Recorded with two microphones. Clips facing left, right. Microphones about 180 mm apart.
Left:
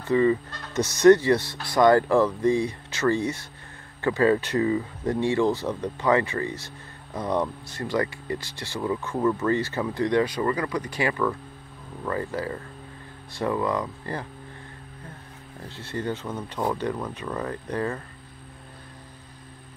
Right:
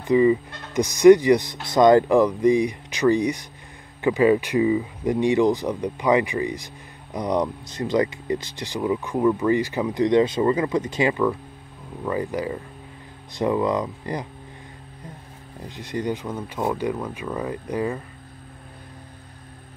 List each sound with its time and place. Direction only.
0.0 s speech: 15° right (ahead or behind)
15.6 s speech: 15° right (ahead or behind)